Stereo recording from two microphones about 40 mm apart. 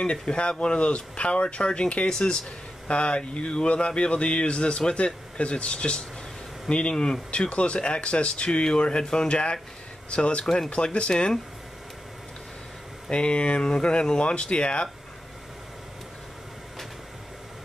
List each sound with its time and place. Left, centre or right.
0.0 s speech: left
10.4 s speech: centre
10.7 s speech: left
13.1 s speech: left